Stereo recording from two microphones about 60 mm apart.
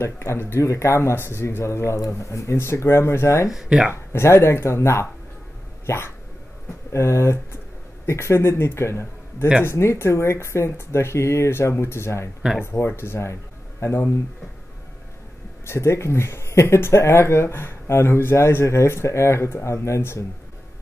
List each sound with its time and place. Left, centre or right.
0.0 s speech: left
3.4 s speech: centre
3.9 s speech: left
15.6 s speech: left